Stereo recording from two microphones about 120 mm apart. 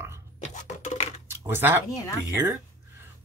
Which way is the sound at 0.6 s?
75° left (ahead or behind).